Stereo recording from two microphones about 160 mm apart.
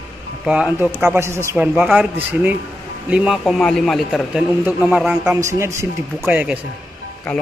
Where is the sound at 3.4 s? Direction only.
Centre (ahead or behind).